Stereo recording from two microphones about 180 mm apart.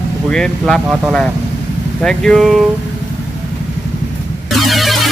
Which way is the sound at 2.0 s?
Centre (ahead or behind).